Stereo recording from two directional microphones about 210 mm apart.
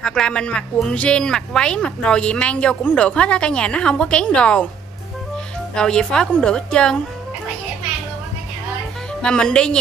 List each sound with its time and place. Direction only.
0.0 s speech: 5° left (ahead or behind)
5.8 s speech: 5° left (ahead or behind)
9.2 s speech: 5° left (ahead or behind)